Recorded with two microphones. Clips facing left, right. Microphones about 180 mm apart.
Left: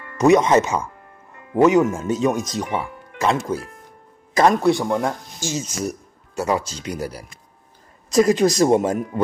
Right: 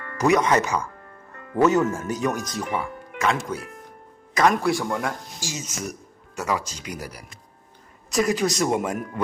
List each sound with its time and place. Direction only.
0.2 s speech: 25° left (ahead or behind)
1.5 s speech: 15° left (ahead or behind)
2.7 s music: 30° left (ahead or behind)
4.3 s speech: 30° left (ahead or behind)